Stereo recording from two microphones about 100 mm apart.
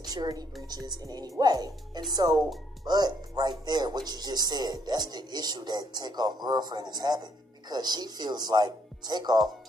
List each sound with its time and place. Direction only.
0.0 s a woman's voice: 40° right (ahead or behind)